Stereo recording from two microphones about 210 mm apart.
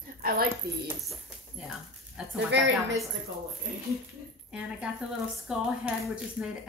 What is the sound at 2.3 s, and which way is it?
Speech, 55° right (ahead or behind).